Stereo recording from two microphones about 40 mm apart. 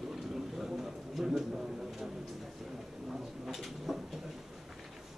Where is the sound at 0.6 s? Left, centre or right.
Centre.